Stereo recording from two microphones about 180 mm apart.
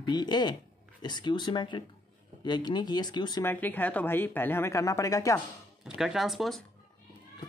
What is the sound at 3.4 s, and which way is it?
Speech, 10° left (ahead or behind).